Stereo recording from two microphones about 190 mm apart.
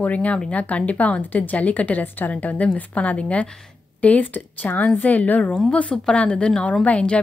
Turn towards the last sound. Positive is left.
turn(degrees=5)  # may be behind; listen again after turning